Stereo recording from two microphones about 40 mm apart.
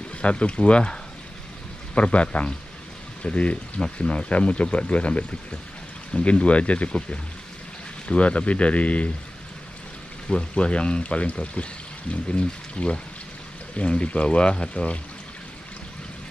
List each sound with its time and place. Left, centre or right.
0.2 s speech: left
2.0 s speech: left
10.2 s speech: left